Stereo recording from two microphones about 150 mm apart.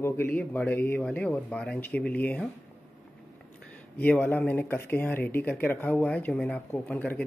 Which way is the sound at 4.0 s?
10° left (ahead or behind).